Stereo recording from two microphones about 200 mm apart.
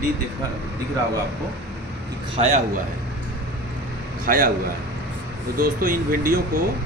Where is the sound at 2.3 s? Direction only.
35° right (ahead or behind).